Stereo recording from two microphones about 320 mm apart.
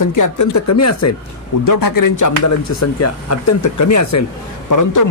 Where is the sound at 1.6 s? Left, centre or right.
Left.